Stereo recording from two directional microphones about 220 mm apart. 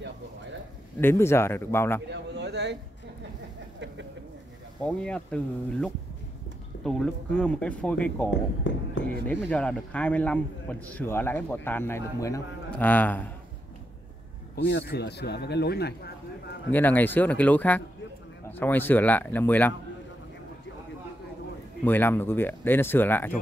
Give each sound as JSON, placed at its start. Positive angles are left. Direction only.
{"t": 1.0, "sound": "a man's voice", "side_deg": 10}
{"t": 2.0, "sound": "a sound", "side_deg": -50}
{"t": 4.8, "sound": "speech", "side_deg": 5}
{"t": 8.3, "sound": "speech", "side_deg": 55}
{"t": 9.2, "sound": "a man's voice", "side_deg": 5}
{"t": 14.5, "sound": "speech", "side_deg": 50}
{"t": 16.7, "sound": "a man's voice", "side_deg": 10}
{"t": 21.8, "sound": "a man's voice", "side_deg": 10}